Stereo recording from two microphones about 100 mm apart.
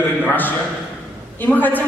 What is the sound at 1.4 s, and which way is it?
Speech, 20° left (ahead or behind).